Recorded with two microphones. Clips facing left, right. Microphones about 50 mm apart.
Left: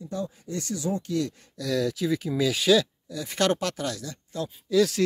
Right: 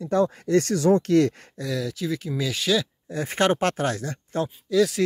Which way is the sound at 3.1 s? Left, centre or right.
Right.